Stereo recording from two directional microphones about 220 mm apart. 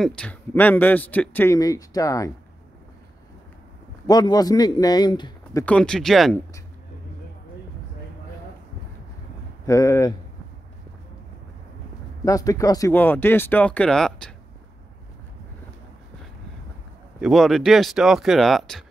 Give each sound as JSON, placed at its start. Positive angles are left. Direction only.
{"t": 0.0, "sound": "a man's voice", "side_deg": 5}
{"t": 4.1, "sound": "a man's voice", "side_deg": 15}
{"t": 9.7, "sound": "a man's voice", "side_deg": 15}
{"t": 12.3, "sound": "a man's voice", "side_deg": 15}
{"t": 17.2, "sound": "speech", "side_deg": 0}